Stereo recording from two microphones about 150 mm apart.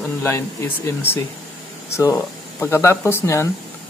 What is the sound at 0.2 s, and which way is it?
Speech, 15° left (ahead or behind).